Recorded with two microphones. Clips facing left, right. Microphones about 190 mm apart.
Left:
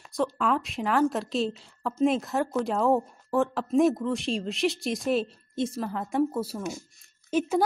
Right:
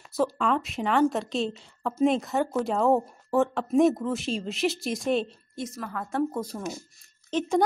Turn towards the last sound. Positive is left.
turn(degrees=10)  # may be behind; listen again after turning